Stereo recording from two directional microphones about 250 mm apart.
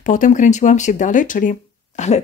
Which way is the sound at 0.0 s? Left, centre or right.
Left.